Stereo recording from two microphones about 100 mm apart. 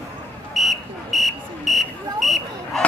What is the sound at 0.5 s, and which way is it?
Buzzer, centre (ahead or behind).